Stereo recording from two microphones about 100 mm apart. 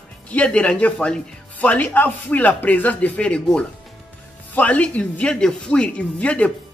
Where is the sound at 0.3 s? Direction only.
10° left (ahead or behind).